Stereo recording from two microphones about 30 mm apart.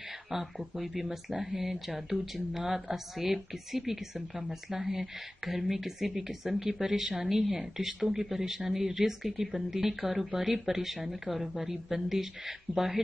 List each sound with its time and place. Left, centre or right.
0.3 s speech: centre